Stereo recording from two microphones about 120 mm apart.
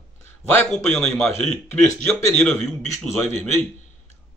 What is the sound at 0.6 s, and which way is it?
Speech, 5° left (ahead or behind).